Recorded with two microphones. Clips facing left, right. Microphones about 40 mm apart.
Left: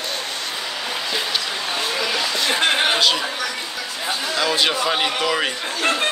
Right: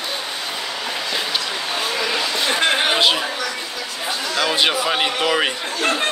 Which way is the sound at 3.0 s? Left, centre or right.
Right.